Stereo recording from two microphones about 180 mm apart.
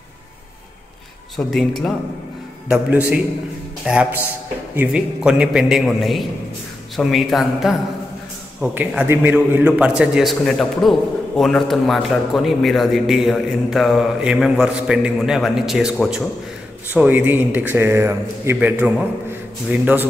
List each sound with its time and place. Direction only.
1.3 s a man's voice: centre (ahead or behind)